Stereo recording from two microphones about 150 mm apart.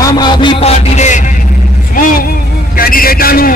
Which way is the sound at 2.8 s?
75° left (ahead or behind).